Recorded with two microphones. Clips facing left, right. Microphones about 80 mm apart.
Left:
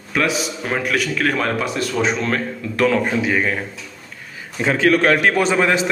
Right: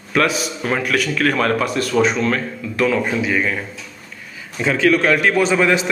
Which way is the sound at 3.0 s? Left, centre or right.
Left.